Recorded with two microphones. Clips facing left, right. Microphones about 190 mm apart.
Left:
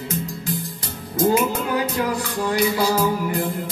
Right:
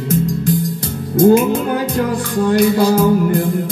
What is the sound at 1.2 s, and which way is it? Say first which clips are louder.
Music: right 8 dB; 50° right (ahead or behind).